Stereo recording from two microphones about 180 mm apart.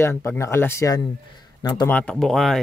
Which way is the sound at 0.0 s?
15° left (ahead or behind).